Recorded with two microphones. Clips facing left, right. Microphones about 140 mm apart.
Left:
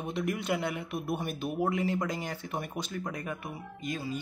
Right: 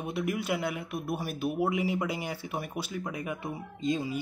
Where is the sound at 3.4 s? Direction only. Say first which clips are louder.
Right 6 dB; 20° right (ahead or behind).